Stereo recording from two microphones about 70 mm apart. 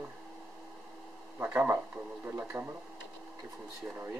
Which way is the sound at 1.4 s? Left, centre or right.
Right.